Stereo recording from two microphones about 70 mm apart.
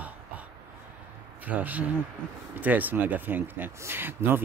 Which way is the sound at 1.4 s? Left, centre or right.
Right.